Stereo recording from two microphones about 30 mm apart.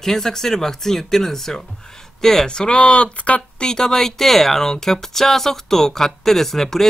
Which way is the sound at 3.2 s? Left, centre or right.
Left.